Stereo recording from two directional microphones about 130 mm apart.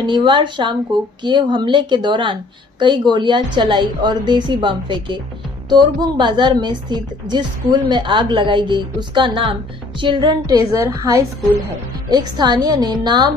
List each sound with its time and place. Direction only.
0.0 s a woman's voice: 35° right (ahead or behind)